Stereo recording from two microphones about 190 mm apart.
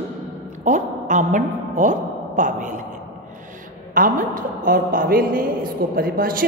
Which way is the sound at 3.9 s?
45° right (ahead or behind).